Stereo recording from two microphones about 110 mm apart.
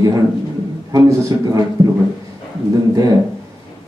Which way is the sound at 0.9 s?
35° right (ahead or behind).